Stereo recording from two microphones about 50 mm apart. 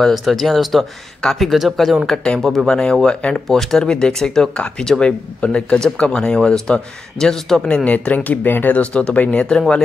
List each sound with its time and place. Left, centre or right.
0.1 s speech: centre
2.2 s a man's voice: centre
4.6 s a man's voice: left
7.6 s speech: left
8.7 s speech: left